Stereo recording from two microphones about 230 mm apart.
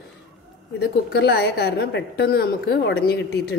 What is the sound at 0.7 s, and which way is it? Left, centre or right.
A woman's voice, left.